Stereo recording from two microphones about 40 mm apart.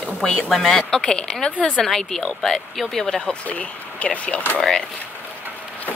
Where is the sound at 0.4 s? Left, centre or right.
Centre; by 1.7 s left.